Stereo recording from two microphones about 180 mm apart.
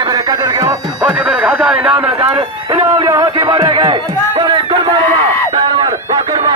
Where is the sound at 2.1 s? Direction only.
30° right (ahead or behind).